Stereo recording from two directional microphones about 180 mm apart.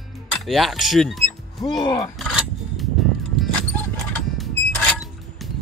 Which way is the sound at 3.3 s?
5° left (ahead or behind).